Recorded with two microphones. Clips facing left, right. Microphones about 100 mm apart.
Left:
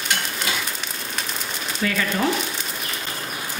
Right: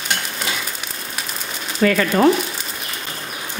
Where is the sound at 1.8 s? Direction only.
55° right (ahead or behind).